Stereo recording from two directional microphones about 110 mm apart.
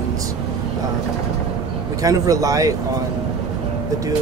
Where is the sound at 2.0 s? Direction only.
30° right (ahead or behind).